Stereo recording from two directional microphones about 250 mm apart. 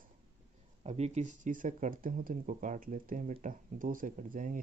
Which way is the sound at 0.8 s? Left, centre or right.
Right.